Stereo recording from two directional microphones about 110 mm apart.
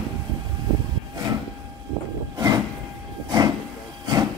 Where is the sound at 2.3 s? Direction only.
35° right (ahead or behind).